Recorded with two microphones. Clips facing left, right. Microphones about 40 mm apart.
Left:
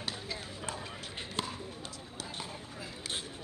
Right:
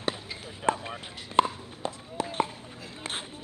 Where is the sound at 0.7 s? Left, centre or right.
Right.